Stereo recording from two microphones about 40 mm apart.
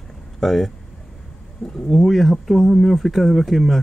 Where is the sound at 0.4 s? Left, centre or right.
Centre.